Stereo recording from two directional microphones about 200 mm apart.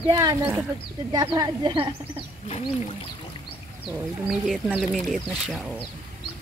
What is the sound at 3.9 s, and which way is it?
Speech, 5° right (ahead or behind).